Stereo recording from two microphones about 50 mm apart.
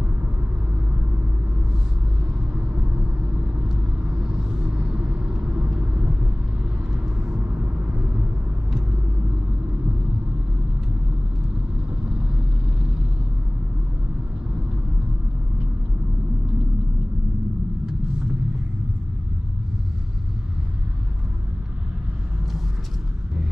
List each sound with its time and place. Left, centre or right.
4.0 s vehicle: centre
7.4 s vehicle: right